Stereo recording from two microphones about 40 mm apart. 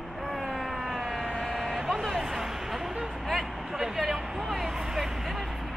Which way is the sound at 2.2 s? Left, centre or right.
Centre.